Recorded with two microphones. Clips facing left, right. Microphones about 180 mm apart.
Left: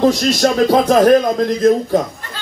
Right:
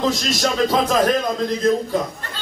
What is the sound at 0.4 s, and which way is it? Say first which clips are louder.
Music: left 5 dB; 60° left (ahead or behind).